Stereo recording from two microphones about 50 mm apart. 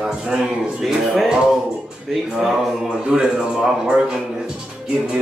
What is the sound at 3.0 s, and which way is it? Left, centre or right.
A man's voice, centre.